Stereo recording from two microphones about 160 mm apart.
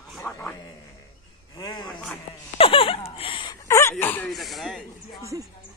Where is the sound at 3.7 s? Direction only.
20° left (ahead or behind).